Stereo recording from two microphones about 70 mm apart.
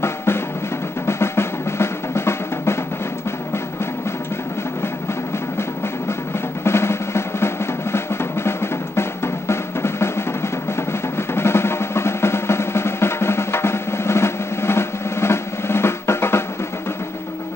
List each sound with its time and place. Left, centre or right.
0.0 s drum: left
1.0 s music: left
6.6 s drum: left